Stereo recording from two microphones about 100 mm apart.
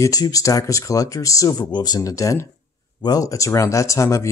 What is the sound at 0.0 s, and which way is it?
Speech, 35° left (ahead or behind).